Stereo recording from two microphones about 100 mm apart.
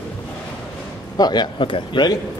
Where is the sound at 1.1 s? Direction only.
40° left (ahead or behind).